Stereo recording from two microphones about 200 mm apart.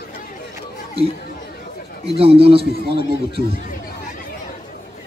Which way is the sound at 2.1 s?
30° right (ahead or behind).